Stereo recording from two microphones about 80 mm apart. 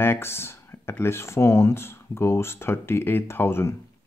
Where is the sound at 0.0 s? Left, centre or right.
Left.